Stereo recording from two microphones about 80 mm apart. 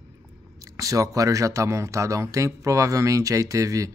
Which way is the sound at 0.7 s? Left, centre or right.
Right.